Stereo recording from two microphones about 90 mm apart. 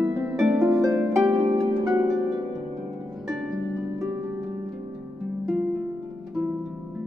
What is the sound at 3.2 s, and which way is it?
Harp, centre (ahead or behind).